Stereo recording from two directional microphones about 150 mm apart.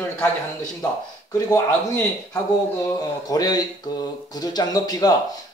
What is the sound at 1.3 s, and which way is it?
Speech, 20° left (ahead or behind).